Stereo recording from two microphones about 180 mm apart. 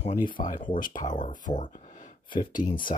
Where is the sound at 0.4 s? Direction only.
45° left (ahead or behind).